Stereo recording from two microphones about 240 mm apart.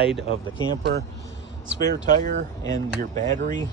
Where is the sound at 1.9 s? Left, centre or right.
Right.